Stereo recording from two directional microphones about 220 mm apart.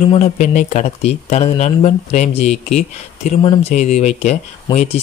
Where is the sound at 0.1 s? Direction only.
30° left (ahead or behind).